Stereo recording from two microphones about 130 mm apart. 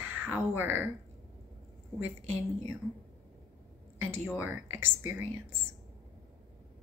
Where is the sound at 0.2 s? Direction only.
15° right (ahead or behind).